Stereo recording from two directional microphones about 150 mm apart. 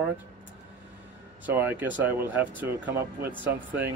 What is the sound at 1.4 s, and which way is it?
Speech, 10° right (ahead or behind).